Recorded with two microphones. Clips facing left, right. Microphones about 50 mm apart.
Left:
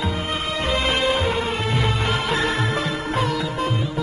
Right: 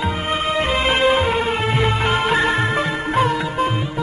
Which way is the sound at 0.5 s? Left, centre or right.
Right.